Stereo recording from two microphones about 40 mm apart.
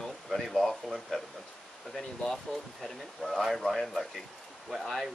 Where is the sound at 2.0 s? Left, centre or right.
Centre.